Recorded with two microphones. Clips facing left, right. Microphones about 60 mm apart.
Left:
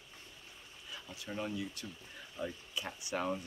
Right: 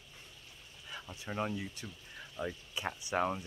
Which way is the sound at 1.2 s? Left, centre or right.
Right.